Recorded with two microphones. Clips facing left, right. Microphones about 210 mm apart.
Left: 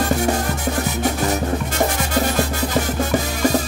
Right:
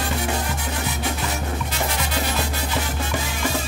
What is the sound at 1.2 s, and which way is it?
Music, 45° left (ahead or behind).